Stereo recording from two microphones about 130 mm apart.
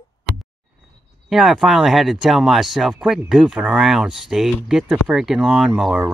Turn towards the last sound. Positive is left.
turn(degrees=-5)  # may be behind; listen again after turning